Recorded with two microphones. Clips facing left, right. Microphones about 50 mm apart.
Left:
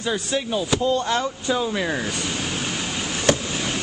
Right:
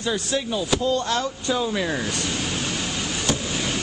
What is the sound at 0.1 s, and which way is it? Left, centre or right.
Speech, centre.